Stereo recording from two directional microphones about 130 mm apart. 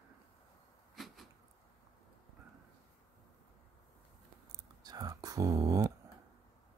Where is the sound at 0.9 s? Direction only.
Centre (ahead or behind).